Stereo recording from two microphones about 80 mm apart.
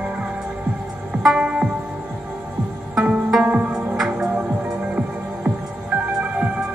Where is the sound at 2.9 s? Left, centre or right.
Centre.